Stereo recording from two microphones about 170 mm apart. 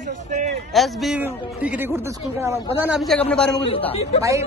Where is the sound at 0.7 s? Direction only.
Centre (ahead or behind).